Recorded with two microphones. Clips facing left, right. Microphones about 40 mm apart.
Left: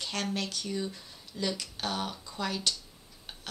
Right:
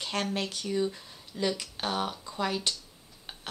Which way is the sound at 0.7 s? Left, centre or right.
Centre.